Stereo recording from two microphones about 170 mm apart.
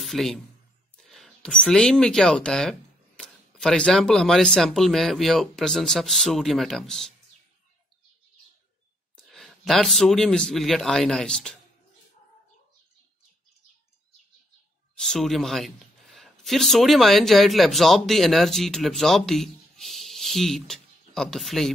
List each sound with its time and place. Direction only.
0.0 s speech: centre (ahead or behind)
9.3 s a man's voice: centre (ahead or behind)
15.0 s speech: centre (ahead or behind)